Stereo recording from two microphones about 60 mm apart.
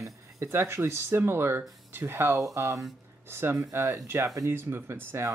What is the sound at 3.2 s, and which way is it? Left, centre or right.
Speech, right.